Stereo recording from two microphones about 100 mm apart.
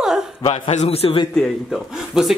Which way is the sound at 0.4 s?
85° left.